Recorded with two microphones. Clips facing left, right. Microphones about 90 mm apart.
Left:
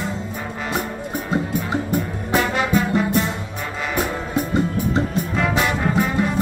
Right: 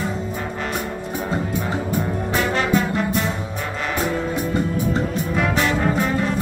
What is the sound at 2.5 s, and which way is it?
Music, 5° left (ahead or behind).